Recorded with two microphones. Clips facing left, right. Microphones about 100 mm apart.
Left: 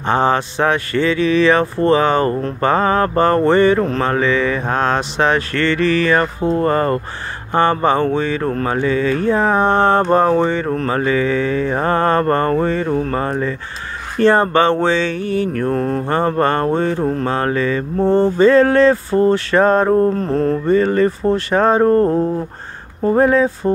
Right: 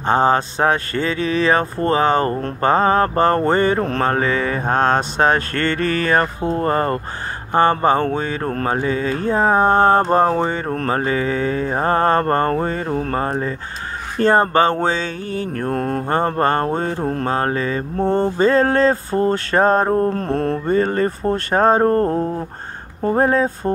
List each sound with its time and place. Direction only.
0.0 s mantra: 40° right (ahead or behind)
3.9 s speech: 40° right (ahead or behind)
6.6 s mantra: 30° right (ahead or behind)
15.7 s mantra: 45° right (ahead or behind)
20.2 s mantra: 60° right (ahead or behind)
20.7 s mantra: 40° right (ahead or behind)
23.1 s mantra: 40° right (ahead or behind)